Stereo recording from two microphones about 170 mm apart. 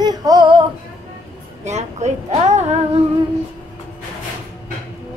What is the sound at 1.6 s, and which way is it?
A woman's voice, 40° right (ahead or behind).